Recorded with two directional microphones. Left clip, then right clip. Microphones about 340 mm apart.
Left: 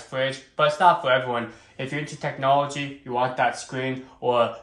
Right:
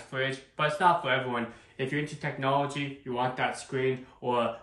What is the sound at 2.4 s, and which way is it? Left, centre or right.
Speech, centre.